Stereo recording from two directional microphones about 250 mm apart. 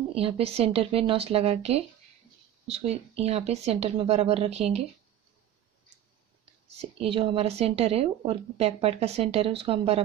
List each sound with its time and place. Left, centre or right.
0.1 s a woman's voice: right
6.8 s a woman's voice: right